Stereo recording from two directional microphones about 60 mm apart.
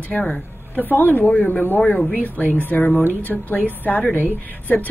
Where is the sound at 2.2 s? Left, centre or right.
Left.